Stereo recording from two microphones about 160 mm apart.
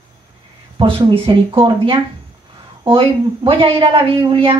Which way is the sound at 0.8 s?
35° right (ahead or behind).